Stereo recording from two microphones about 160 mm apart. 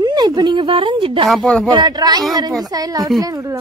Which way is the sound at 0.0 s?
25° right (ahead or behind).